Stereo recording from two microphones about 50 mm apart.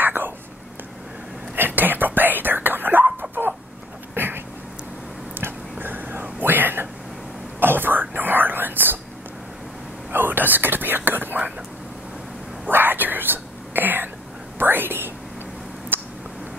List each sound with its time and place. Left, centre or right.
0.0 s whispering: right
1.5 s whispering: right
3.2 s dog: right
4.1 s a sound: right
5.4 s a sound: right
7.6 s whispering: right
10.1 s whispering: right
12.6 s whispering: right
15.9 s a sound: right